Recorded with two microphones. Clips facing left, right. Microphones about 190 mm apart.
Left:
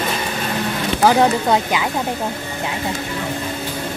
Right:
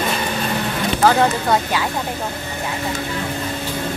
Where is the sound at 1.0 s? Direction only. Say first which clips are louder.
Left 2 dB; 15° left (ahead or behind).